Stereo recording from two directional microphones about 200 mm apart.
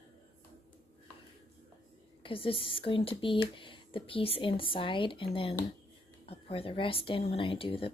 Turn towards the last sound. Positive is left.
turn(degrees=30)  # may be behind; listen again after turning